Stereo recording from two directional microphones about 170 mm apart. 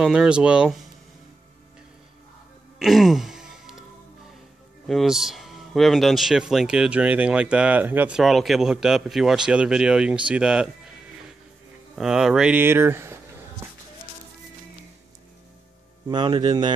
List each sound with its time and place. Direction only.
0.0 s speech: 5° right (ahead or behind)
2.8 s music: centre (ahead or behind)
4.8 s speech: centre (ahead or behind)
10.2 s music: 5° right (ahead or behind)
11.9 s speech: 5° right (ahead or behind)
16.1 s speech: 25° right (ahead or behind)